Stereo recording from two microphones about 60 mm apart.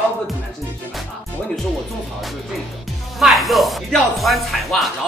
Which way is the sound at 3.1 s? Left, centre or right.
Centre.